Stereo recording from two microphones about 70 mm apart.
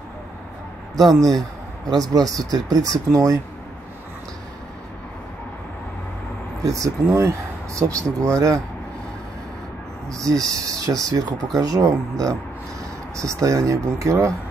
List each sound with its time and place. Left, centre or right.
1.9 s speech: right
3.1 s speech: right
6.6 s speech: right
10.0 s speech: centre
10.3 s speech: right